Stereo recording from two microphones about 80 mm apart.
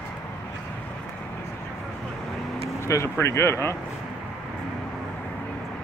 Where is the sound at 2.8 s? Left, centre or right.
Left.